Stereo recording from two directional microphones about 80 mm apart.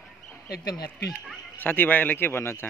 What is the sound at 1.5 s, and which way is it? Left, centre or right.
A man's voice, left.